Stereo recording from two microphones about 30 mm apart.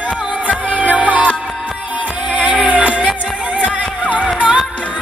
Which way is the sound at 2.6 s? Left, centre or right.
Right.